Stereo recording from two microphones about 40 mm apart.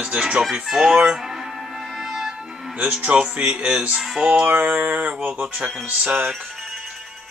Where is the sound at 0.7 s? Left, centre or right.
Centre.